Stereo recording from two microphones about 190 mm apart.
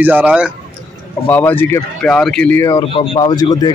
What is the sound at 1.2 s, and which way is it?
Speech, 10° left (ahead or behind).